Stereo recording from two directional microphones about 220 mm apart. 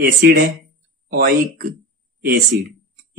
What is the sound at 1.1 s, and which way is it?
Speech, 45° right (ahead or behind).